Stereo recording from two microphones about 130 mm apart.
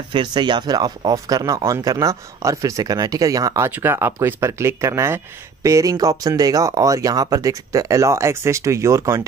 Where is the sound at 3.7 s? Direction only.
15° right (ahead or behind).